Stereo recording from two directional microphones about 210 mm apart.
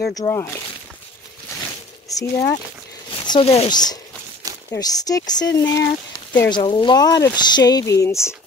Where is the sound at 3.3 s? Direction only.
30° left (ahead or behind).